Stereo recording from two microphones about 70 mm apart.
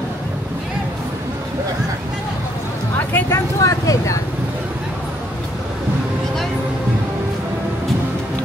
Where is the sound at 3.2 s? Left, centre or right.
Left.